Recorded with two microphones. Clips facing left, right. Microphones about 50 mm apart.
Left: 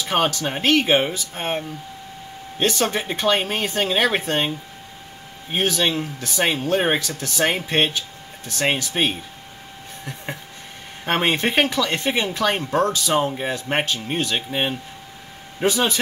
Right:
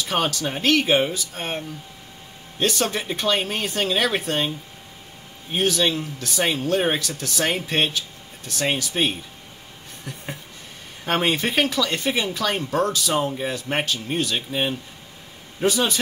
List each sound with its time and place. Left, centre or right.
0.1 s speech: left
2.6 s speech: left
5.5 s speech: left
11.1 s speech: left